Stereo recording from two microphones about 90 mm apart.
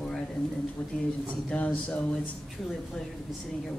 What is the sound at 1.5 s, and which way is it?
Speech, 15° left (ahead or behind).